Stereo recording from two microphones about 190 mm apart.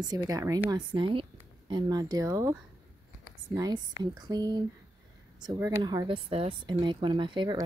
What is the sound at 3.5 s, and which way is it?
A woman's voice, 20° right (ahead or behind).